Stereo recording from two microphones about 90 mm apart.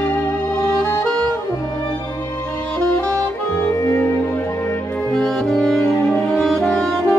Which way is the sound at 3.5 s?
20° left (ahead or behind).